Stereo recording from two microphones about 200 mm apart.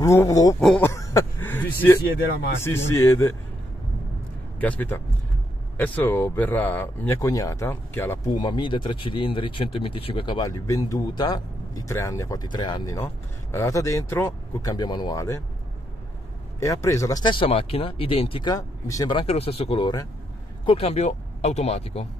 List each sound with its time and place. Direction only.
0.0 s speech: 15° left (ahead or behind)
4.6 s speech: 10° left (ahead or behind)
8.4 s speech: 25° left (ahead or behind)
16.5 s speech: 15° left (ahead or behind); by 22.0 s 30° left (ahead or behind)